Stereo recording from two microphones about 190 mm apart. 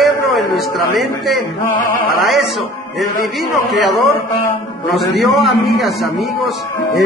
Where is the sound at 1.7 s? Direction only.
45° left (ahead or behind).